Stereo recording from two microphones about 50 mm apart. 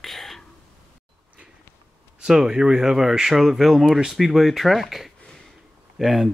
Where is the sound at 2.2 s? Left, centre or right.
Centre.